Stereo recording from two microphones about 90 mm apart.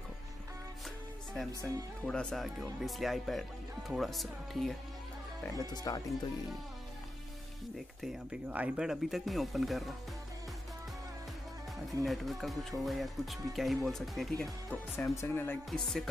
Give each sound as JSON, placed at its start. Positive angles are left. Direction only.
{"t": 2.0, "sound": "speech", "side_deg": 10}
{"t": 5.5, "sound": "speech", "side_deg": 45}
{"t": 8.0, "sound": "speech", "side_deg": -5}
{"t": 8.5, "sound": "speech", "side_deg": -15}
{"t": 12.0, "sound": "speech", "side_deg": 0}
{"t": 14.7, "sound": "speech", "side_deg": 25}
{"t": 15.7, "sound": "speech", "side_deg": 5}